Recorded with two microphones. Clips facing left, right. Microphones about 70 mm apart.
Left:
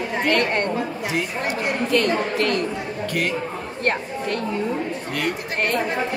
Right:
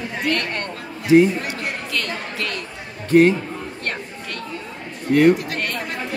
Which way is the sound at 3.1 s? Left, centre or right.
Right.